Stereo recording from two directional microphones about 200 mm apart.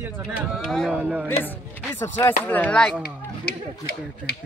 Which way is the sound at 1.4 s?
10° left (ahead or behind).